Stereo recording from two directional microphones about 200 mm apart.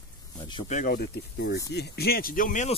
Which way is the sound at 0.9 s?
55° left (ahead or behind).